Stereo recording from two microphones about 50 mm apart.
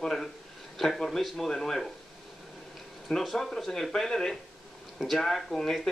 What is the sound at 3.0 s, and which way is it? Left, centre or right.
Speech, centre.